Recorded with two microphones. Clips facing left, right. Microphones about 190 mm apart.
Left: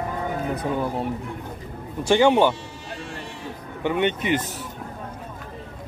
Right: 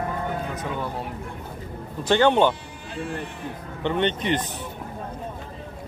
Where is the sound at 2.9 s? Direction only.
55° right (ahead or behind).